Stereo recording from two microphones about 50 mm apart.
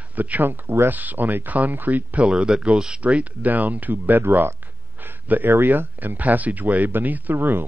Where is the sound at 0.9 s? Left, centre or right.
Right.